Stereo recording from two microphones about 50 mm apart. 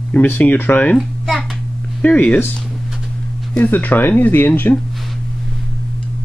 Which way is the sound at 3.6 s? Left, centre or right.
Left.